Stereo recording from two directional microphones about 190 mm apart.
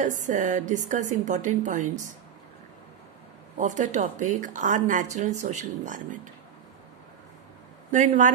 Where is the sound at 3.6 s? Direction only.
40° right (ahead or behind).